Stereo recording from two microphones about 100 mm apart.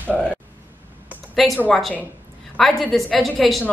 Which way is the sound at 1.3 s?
Centre (ahead or behind).